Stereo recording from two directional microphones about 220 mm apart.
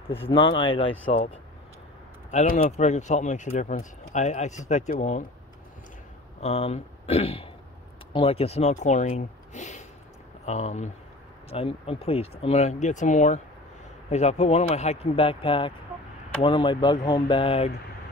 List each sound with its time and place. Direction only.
0.3 s speech: 20° left (ahead or behind)
2.3 s speech: 35° left (ahead or behind)
6.4 s speech: 30° left (ahead or behind)